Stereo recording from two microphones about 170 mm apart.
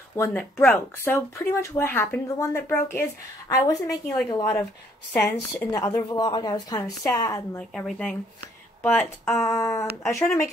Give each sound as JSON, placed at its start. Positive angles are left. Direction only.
{"t": 0.1, "sound": "a woman's voice", "side_deg": 15}
{"t": 7.5, "sound": "a woman's voice", "side_deg": 5}